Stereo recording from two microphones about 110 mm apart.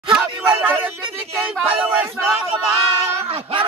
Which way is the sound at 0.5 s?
20° right (ahead or behind).